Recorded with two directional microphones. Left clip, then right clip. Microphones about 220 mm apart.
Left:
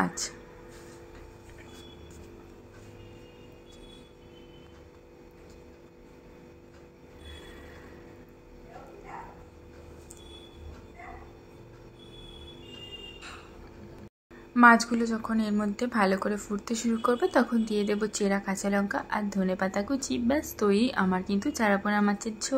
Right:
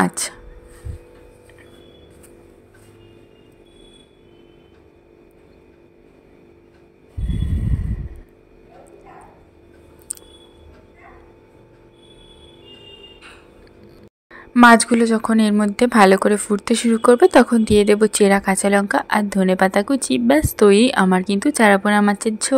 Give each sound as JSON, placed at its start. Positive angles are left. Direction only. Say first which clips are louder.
{"t": 0.0, "sound": "speech", "louder": "right 10 dB", "side_deg": -35}
{"t": 14.5, "sound": "a woman's voice", "louder": "right 8 dB", "side_deg": -40}